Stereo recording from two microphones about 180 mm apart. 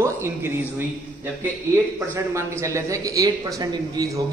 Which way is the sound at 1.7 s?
15° right (ahead or behind).